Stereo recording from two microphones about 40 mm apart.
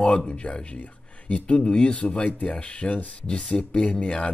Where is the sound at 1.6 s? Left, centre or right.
Left.